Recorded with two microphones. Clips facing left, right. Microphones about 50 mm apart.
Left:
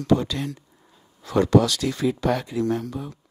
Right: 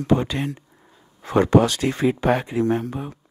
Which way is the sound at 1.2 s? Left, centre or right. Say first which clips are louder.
Right 2 dB; right.